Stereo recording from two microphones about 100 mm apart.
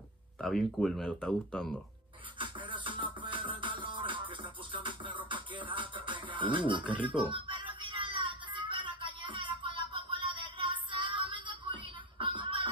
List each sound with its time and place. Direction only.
0.4 s speech: 5° left (ahead or behind)
2.3 s music: 55° right (ahead or behind)